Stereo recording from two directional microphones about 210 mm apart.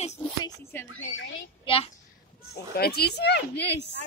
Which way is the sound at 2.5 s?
50° left (ahead or behind).